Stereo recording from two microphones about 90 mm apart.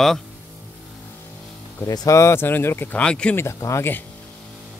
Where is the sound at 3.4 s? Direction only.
35° left (ahead or behind).